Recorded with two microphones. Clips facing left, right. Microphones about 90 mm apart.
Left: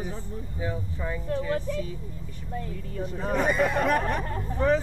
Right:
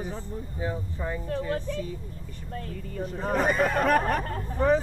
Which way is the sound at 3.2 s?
40° right (ahead or behind).